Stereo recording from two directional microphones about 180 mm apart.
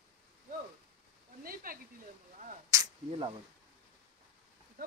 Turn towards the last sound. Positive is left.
turn(degrees=-20)  # may be behind; listen again after turning